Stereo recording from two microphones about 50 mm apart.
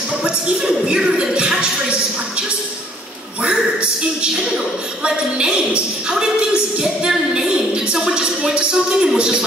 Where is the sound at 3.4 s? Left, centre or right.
Centre.